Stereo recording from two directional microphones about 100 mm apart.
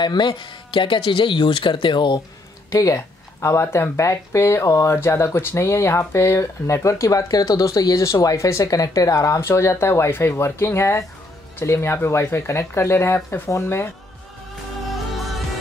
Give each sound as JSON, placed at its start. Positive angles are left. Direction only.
{"t": 0.0, "sound": "speech", "side_deg": 50}
{"t": 2.7, "sound": "speech", "side_deg": 30}
{"t": 14.9, "sound": "music", "side_deg": 0}